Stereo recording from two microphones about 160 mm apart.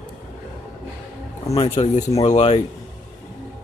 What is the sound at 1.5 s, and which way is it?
Speech, 40° left (ahead or behind).